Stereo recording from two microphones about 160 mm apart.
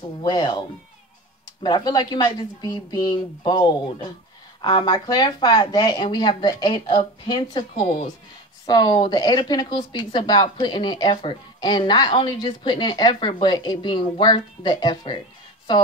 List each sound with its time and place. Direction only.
0.2 s a woman's voice: 25° left (ahead or behind)